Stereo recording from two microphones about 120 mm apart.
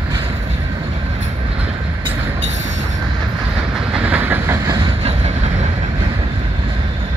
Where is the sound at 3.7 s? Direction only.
10° right (ahead or behind).